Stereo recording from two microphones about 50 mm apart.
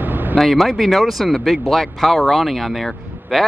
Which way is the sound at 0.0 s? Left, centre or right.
Right.